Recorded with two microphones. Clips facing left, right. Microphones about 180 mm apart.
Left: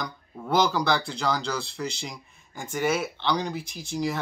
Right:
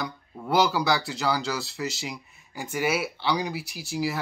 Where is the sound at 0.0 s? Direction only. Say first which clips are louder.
Right 1 dB; 5° right (ahead or behind).